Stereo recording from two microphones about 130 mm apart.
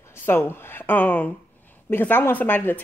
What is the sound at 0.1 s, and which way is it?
A woman's voice, 20° left (ahead or behind).